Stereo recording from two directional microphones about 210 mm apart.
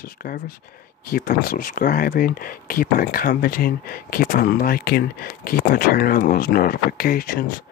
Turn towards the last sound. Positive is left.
turn(degrees=45)  # may be behind; listen again after turning